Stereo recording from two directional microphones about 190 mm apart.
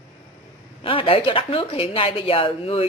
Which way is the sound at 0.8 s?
30° left (ahead or behind).